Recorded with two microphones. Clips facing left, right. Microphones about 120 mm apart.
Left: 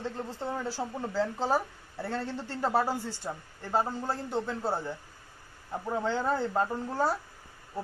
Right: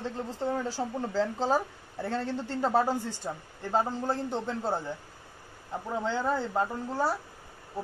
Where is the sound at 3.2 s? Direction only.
5° right (ahead or behind).